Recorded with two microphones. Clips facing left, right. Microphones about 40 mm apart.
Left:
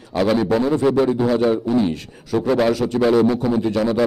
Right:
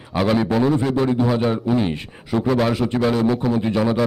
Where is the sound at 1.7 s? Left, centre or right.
Right.